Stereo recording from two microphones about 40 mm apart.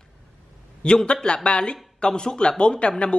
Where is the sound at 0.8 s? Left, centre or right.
Left.